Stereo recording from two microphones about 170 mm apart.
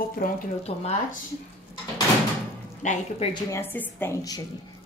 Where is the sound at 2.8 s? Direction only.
45° left (ahead or behind).